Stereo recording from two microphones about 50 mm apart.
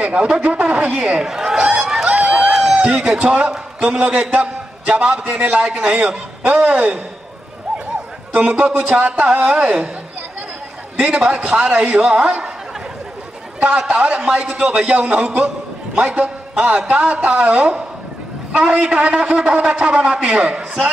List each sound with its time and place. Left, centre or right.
0.0 s a man's voice: right
1.2 s a sound: centre
1.6 s honk: centre
2.1 s a sound: right
3.0 s a man's voice: centre
8.3 s a man's voice: right
11.1 s a man's voice: right
13.6 s a man's voice: right